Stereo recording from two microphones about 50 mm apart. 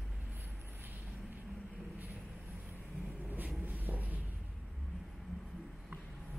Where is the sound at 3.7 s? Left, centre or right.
Right.